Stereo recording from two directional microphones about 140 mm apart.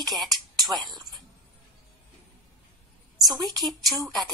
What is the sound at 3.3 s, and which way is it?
Speech, 30° right (ahead or behind).